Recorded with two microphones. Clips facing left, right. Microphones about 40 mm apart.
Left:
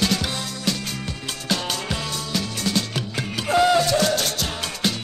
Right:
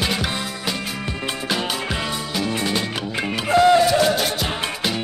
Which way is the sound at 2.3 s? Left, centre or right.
Centre.